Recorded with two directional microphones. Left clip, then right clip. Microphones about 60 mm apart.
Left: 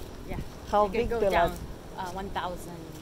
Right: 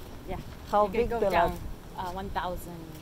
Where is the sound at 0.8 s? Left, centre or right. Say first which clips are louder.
Even; centre.